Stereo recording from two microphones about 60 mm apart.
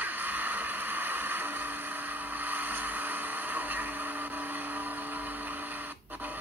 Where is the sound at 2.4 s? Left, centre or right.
Right.